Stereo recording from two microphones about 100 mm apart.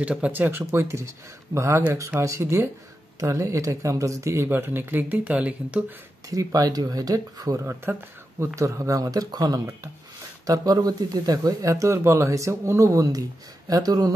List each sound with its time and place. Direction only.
0.0 s speech: 15° right (ahead or behind)
6.3 s speech: 35° right (ahead or behind)
7.6 s speech: 25° right (ahead or behind); by 14.1 s 40° right (ahead or behind)